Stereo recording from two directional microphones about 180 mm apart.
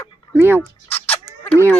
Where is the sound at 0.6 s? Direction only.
10° left (ahead or behind).